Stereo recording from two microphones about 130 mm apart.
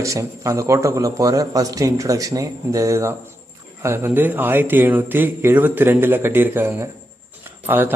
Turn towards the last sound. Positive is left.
turn(degrees=-15)  # may be behind; listen again after turning